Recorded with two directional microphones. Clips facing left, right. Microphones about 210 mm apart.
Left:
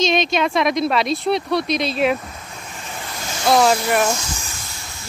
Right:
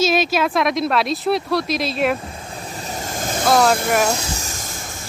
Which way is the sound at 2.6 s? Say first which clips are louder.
Right 5 dB; 35° right (ahead or behind).